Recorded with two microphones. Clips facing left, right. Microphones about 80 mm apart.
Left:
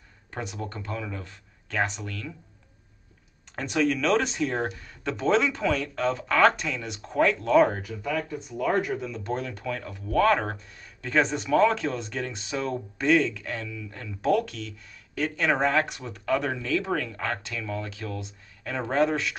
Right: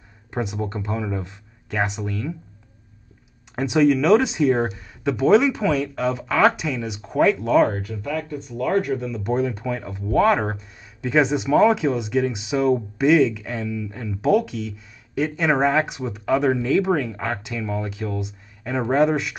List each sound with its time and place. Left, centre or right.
0.3 s speech: centre
3.5 s speech: centre
9.3 s speech: centre